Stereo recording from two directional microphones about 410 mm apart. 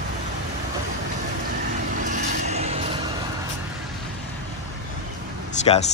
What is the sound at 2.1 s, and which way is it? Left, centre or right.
Vehicle, centre.